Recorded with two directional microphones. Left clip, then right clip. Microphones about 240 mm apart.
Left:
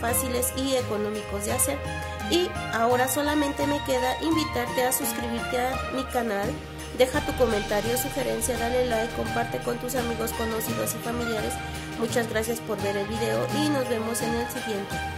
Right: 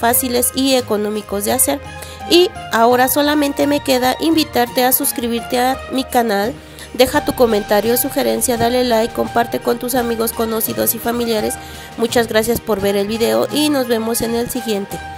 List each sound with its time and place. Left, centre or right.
0.0 s speech: right